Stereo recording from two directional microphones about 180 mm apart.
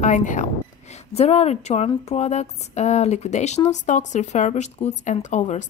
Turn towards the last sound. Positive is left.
turn(degrees=40)  # may be behind; listen again after turning